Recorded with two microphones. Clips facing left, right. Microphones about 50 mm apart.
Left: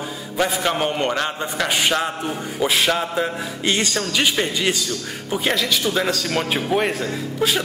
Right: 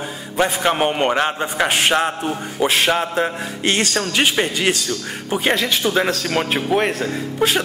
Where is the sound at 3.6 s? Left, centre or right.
Right.